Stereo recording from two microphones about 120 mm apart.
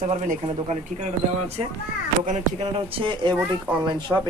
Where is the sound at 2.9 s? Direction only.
45° right (ahead or behind).